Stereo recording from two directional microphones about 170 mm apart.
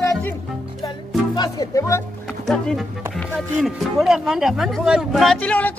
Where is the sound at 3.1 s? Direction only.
Centre (ahead or behind).